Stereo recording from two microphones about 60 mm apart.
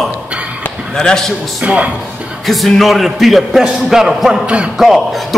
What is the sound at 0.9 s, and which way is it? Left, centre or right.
Speech, centre.